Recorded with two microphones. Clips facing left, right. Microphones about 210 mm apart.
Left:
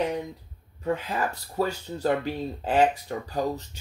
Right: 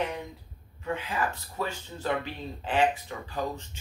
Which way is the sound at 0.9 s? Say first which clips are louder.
Left 2 dB; 40° left (ahead or behind).